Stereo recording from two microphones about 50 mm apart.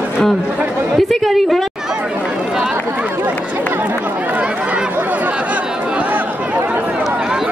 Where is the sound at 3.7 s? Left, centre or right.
Right.